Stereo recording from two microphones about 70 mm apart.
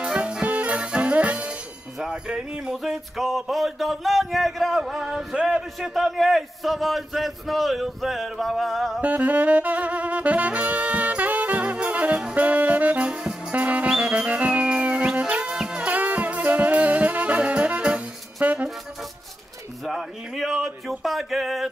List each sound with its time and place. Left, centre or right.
0.0 s music: centre
9.0 s saxophone: right
12.4 s music: right
19.8 s music: centre